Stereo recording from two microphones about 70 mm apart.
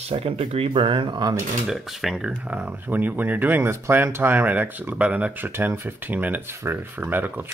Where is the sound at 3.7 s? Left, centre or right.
Right; by 5.4 s centre.